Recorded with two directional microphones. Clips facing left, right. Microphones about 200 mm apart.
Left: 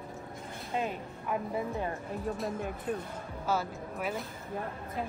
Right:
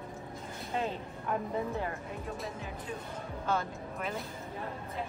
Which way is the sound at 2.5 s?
55° left (ahead or behind).